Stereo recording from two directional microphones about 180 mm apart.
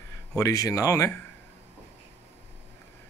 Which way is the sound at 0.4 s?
20° left (ahead or behind).